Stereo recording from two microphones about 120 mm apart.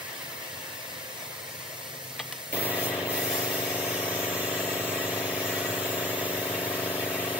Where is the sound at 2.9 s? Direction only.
25° left (ahead or behind).